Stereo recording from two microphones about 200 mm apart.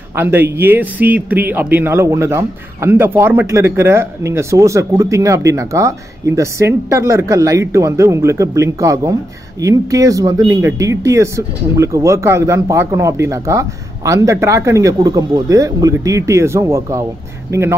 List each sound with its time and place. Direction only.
0.1 s speech: 10° right (ahead or behind)